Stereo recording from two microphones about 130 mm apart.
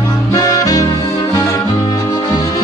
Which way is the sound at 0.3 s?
25° left (ahead or behind).